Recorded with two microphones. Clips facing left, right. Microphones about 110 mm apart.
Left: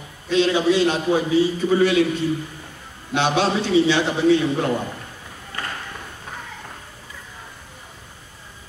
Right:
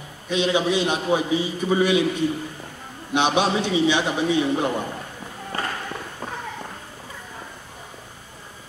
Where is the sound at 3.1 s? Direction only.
15° right (ahead or behind).